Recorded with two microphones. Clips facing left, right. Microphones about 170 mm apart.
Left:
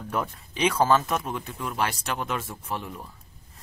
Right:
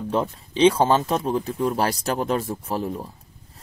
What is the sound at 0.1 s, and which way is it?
Speech, 30° right (ahead or behind).